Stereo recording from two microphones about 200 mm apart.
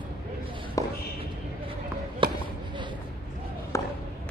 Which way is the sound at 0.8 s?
15° left (ahead or behind).